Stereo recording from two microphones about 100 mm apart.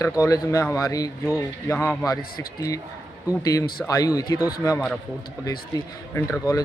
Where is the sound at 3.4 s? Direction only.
35° left (ahead or behind).